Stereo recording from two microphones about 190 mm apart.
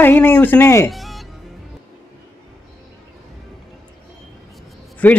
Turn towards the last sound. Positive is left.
turn(degrees=10)  # may be behind; listen again after turning